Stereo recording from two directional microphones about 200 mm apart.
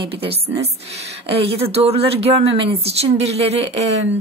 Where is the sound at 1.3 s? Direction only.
30° right (ahead or behind).